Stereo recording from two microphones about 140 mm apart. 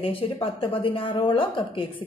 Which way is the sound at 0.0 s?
40° left (ahead or behind).